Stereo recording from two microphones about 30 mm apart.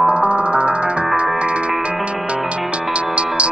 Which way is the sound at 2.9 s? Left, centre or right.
Right.